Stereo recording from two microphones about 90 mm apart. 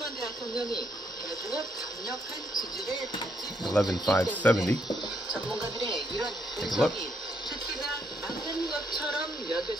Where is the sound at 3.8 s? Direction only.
15° left (ahead or behind).